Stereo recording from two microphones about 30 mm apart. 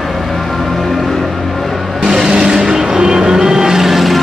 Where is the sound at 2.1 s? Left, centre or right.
Right.